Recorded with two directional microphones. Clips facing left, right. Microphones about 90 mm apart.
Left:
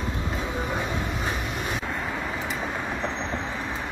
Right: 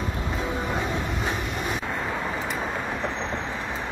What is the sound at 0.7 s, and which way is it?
Vehicle, centre (ahead or behind).